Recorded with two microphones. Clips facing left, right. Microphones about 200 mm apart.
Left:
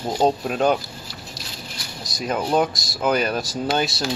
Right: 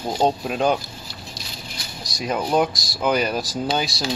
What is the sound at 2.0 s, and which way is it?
Speech, centre (ahead or behind).